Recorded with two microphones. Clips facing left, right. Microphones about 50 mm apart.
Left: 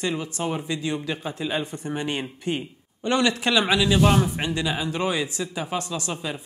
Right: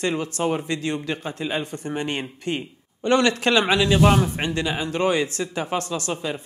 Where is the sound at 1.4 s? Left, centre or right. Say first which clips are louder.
Even; right.